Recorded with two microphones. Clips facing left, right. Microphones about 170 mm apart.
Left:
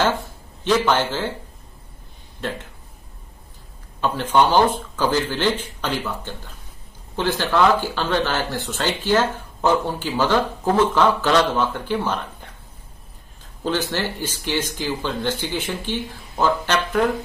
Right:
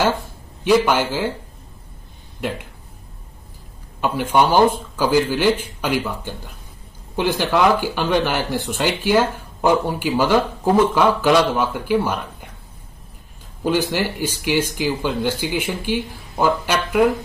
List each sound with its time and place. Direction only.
0.7 s speech: 10° right (ahead or behind)
2.4 s speech: 10° right (ahead or behind)
4.0 s speech: 10° right (ahead or behind)
13.7 s speech: 10° right (ahead or behind)